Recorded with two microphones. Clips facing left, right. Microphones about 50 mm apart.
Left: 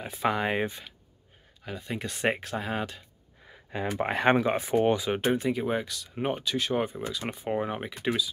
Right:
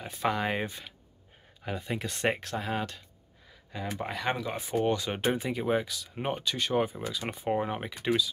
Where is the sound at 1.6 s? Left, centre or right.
Centre.